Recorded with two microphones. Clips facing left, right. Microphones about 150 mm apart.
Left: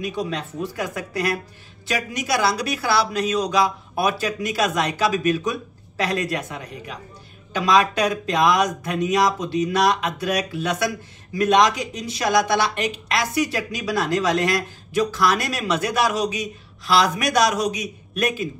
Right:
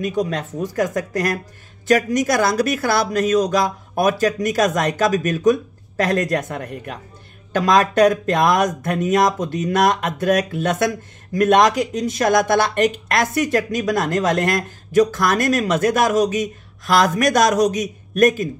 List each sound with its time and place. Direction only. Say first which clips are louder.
0.0 s speech: right 5 dB; 45° right (ahead or behind)